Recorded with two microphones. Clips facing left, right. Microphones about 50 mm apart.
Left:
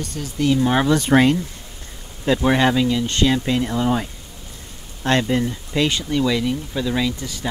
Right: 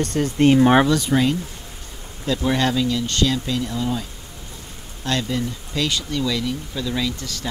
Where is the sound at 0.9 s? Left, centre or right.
Left.